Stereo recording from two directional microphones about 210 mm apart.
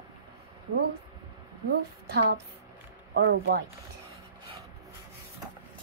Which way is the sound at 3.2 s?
55° right (ahead or behind).